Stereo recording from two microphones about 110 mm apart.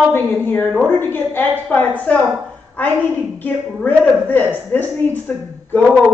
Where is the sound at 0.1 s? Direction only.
20° left (ahead or behind).